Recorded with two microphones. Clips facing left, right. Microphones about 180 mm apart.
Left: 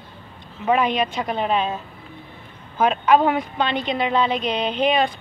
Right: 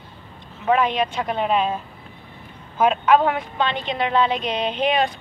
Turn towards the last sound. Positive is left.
turn(degrees=0)  # may be behind; listen again after turning